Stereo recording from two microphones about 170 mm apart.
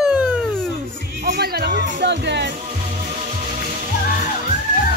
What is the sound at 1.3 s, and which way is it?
Music, 70° right (ahead or behind).